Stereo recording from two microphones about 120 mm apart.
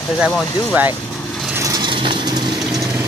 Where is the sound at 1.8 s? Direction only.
45° right (ahead or behind).